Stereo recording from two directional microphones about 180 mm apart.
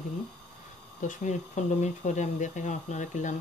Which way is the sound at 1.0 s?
45° left (ahead or behind).